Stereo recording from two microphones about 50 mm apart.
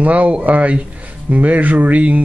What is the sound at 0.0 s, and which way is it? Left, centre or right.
Speech, right.